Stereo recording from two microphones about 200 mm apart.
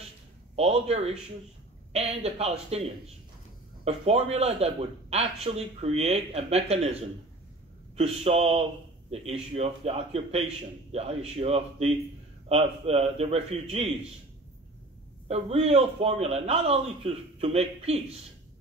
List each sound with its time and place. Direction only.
0.6 s a man's voice: 30° right (ahead or behind)
15.2 s a man's voice: 30° right (ahead or behind)